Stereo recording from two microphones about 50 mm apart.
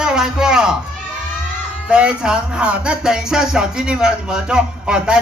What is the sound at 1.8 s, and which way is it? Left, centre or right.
Speech, right.